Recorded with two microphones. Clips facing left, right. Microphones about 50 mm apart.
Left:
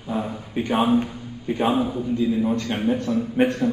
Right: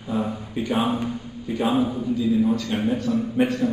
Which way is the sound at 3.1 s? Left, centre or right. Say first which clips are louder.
Even; left.